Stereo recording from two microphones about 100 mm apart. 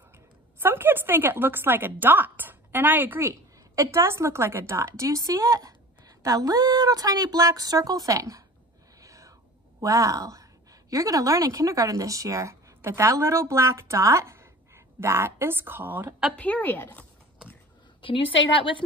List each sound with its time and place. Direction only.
0.6 s speech: 20° right (ahead or behind)
9.0 s whispering: 35° right (ahead or behind)
9.8 s a woman's voice: 35° right (ahead or behind); by 16.2 s 20° right (ahead or behind)
16.3 s a woman's voice: 15° left (ahead or behind)
18.0 s a woman's voice: 60° left (ahead or behind)